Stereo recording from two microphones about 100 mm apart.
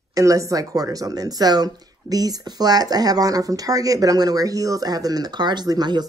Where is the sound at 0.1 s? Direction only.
35° right (ahead or behind).